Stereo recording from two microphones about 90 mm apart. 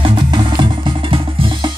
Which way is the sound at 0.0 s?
60° right (ahead or behind).